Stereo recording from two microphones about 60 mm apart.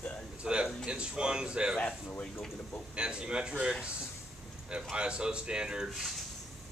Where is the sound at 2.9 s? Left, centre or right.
Centre.